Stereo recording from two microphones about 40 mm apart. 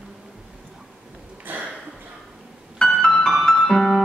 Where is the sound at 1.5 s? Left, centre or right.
Right.